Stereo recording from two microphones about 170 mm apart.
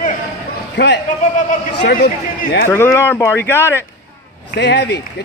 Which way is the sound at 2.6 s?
15° left (ahead or behind).